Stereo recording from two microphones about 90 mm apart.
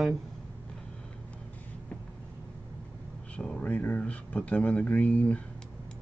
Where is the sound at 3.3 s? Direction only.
10° left (ahead or behind).